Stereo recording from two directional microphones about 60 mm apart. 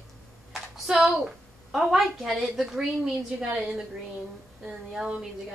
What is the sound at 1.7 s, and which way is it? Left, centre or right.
A woman's voice, centre.